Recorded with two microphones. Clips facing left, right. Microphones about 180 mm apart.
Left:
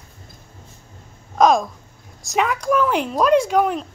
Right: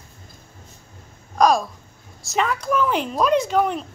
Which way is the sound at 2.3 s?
10° left (ahead or behind).